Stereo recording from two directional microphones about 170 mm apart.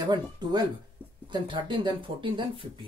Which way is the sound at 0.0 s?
25° right (ahead or behind).